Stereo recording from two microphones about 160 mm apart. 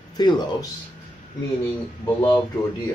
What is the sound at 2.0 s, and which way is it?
Speech, 15° left (ahead or behind).